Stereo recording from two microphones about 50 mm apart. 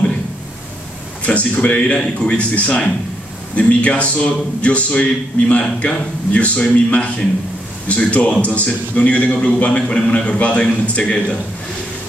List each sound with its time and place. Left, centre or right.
1.2 s speech: left